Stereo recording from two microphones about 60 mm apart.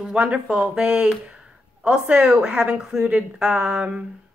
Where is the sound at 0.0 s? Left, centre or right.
Centre.